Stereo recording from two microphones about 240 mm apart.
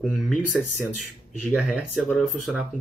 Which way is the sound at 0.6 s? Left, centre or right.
Left.